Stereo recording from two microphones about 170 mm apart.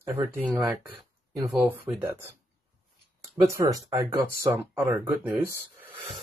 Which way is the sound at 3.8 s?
15° right (ahead or behind).